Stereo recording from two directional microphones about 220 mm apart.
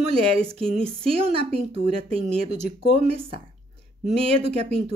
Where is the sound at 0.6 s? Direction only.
5° left (ahead or behind).